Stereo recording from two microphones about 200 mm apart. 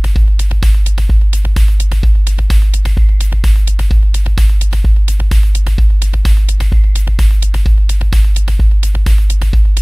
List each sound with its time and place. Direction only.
0.0 s music: 5° right (ahead or behind)